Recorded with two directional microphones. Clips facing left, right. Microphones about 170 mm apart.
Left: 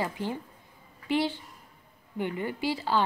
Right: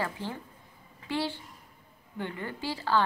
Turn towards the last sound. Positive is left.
turn(degrees=15)  # may be behind; listen again after turning